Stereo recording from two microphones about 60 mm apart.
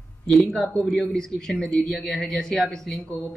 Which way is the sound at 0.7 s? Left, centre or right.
Centre.